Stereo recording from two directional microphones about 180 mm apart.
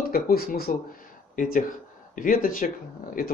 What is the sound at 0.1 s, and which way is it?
Speech, 55° left (ahead or behind).